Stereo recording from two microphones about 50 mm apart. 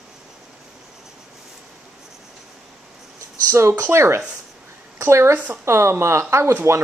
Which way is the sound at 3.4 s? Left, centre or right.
Right.